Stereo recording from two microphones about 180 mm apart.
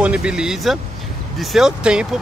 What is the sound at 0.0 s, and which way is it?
Speech, 5° right (ahead or behind).